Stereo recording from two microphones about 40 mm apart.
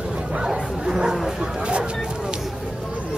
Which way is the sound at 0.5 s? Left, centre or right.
Centre.